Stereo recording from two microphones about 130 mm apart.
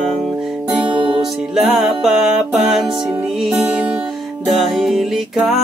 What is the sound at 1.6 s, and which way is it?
Music, centre (ahead or behind).